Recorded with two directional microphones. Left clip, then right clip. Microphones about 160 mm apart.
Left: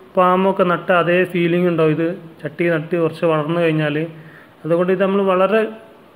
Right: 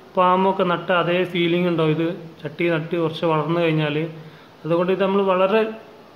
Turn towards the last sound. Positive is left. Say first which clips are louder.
# left 2 dB
turn(degrees=15)  # may be behind; listen again after turning